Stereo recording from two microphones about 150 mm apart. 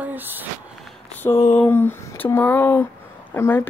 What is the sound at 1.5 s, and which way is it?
Speech, 15° left (ahead or behind).